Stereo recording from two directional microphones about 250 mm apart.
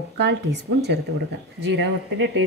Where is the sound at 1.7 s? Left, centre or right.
Right.